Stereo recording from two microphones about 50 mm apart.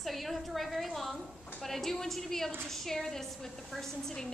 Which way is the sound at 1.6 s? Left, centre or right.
Centre.